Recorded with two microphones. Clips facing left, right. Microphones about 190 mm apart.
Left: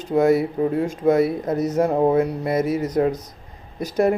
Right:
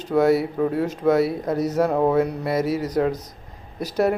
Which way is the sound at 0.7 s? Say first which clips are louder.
Left 1 dB; 5° right (ahead or behind).